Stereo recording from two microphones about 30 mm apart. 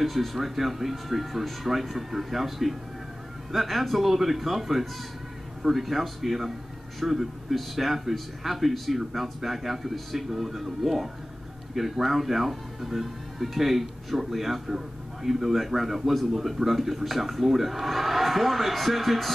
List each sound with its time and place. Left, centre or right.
0.0 s a man's voice: centre